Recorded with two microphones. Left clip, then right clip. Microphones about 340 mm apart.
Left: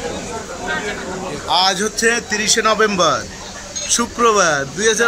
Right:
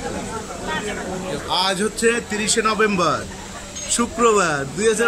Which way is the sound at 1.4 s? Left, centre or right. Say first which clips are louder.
Left 5 dB; centre.